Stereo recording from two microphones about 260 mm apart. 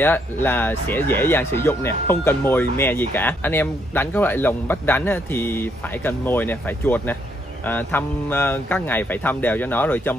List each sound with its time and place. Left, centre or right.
0.0 s speech: centre